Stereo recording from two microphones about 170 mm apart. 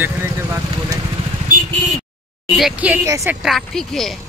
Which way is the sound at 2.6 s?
5° right (ahead or behind).